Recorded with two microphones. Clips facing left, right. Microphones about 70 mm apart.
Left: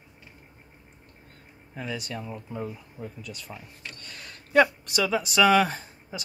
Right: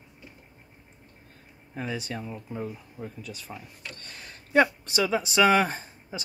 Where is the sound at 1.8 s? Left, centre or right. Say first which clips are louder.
Right 1 dB; right.